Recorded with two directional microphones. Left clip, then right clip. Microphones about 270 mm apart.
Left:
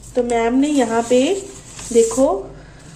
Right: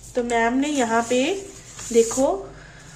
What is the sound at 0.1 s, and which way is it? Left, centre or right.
Speech, centre.